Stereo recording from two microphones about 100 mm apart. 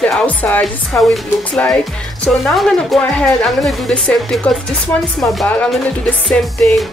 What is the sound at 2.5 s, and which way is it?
Speech, centre (ahead or behind).